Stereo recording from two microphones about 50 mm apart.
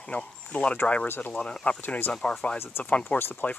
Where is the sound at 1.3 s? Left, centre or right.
Centre.